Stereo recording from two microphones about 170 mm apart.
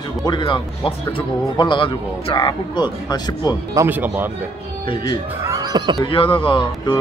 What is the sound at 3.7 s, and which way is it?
Speech, 15° right (ahead or behind).